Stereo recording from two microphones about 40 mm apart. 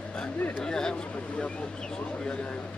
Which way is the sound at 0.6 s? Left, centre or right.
Centre.